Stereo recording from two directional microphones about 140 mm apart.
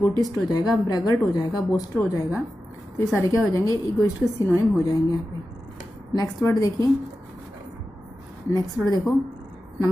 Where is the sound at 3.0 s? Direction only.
20° left (ahead or behind).